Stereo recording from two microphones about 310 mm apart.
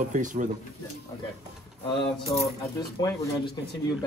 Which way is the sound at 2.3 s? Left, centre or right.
Centre.